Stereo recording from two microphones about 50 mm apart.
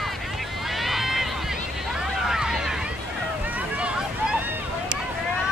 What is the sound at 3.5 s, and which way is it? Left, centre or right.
Boat, right.